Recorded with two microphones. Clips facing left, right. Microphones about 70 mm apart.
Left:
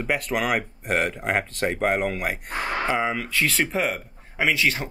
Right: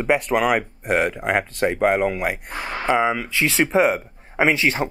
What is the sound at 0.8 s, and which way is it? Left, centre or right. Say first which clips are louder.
Speech: right 3 dB; centre.